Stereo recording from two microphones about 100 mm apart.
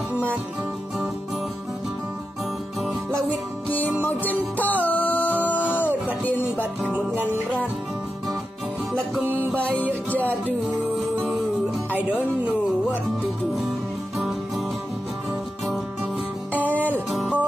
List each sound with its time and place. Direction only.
4.0 s music: 15° left (ahead or behind)
6.9 s music: 15° right (ahead or behind)
9.6 s music: 15° left (ahead or behind)
16.6 s music: 15° left (ahead or behind)
17.1 s music: centre (ahead or behind)